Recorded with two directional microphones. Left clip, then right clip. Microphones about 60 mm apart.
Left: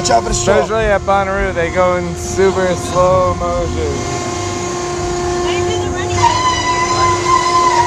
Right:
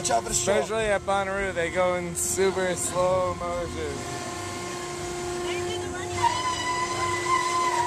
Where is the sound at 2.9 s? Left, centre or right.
Right.